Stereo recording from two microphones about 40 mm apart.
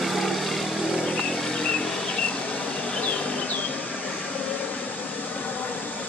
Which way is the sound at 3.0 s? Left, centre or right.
Left.